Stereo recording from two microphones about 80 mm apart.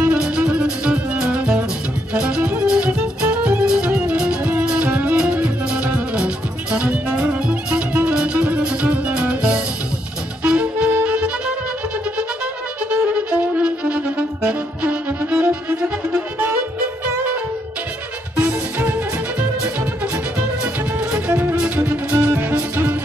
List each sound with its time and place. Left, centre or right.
0.0 s music: centre
10.4 s saxophone: centre
12.9 s music: centre
18.4 s music: right
21.3 s music: right